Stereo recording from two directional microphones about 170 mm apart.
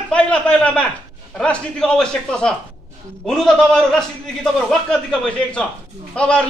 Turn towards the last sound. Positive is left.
turn(degrees=5)  # may be behind; listen again after turning